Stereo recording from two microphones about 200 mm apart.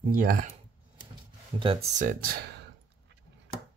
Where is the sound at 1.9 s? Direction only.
45° right (ahead or behind).